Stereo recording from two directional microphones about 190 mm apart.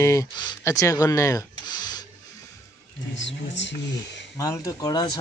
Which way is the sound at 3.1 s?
70° left (ahead or behind).